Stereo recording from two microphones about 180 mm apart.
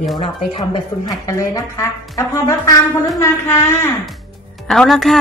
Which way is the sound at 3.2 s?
15° left (ahead or behind).